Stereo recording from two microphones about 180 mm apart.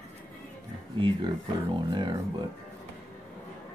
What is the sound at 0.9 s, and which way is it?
Speech, 25° right (ahead or behind).